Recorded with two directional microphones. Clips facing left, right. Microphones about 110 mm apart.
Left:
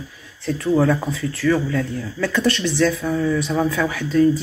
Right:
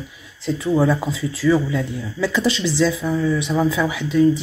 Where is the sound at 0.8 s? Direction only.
15° right (ahead or behind).